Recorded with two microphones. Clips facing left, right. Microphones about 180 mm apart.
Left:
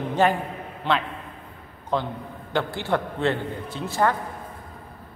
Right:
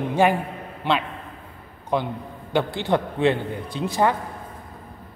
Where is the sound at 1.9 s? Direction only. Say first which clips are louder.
Right 2 dB; 15° right (ahead or behind).